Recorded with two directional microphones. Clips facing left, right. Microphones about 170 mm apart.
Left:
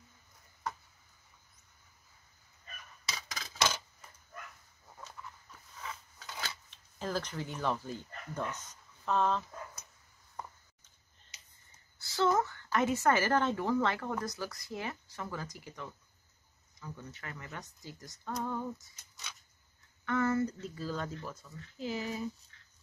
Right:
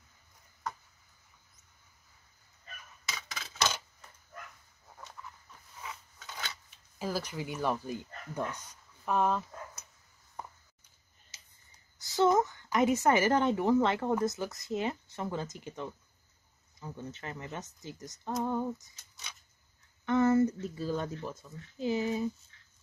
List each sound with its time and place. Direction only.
3.1 s a sound: 35° left (ahead or behind)
6.7 s speech: 10° right (ahead or behind)
12.0 s a woman's voice: 20° right (ahead or behind)
20.1 s a woman's voice: 20° right (ahead or behind)